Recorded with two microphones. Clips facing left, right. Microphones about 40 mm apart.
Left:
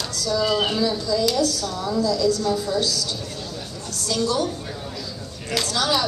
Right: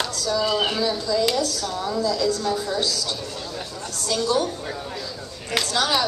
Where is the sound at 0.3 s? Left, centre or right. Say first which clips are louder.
Left 2 dB; centre.